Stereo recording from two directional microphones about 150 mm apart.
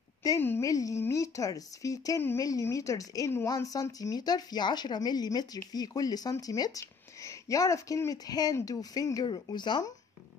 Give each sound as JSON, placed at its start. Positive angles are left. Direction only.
{"t": 0.2, "sound": "speech", "side_deg": 20}